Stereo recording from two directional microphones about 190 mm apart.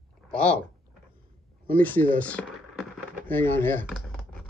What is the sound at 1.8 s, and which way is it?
Speech, 10° left (ahead or behind).